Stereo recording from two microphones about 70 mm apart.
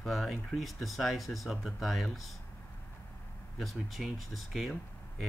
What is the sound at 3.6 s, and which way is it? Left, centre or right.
Speech, centre.